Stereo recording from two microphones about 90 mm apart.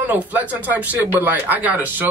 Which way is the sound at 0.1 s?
20° right (ahead or behind).